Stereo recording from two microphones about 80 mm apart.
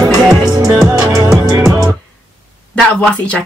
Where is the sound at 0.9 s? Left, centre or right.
Right.